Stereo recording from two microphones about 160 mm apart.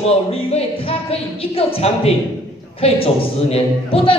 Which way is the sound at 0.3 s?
40° left (ahead or behind).